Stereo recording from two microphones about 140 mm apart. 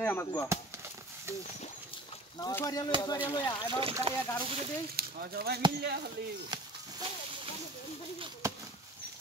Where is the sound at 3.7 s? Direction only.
40° right (ahead or behind).